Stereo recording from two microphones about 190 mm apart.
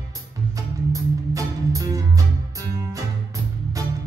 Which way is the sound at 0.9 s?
15° right (ahead or behind).